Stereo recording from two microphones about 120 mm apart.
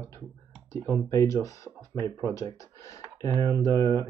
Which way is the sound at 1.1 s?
25° left (ahead or behind).